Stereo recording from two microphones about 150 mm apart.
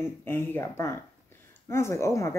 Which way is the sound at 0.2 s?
15° left (ahead or behind).